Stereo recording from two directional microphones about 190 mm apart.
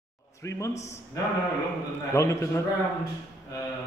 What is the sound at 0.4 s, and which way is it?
Speech, 15° left (ahead or behind).